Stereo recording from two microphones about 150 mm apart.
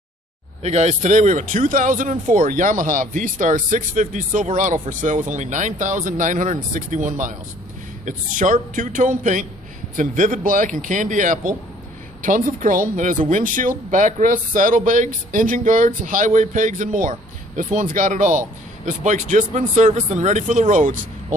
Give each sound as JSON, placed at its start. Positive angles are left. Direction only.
{"t": 0.6, "sound": "a man's voice", "side_deg": -45}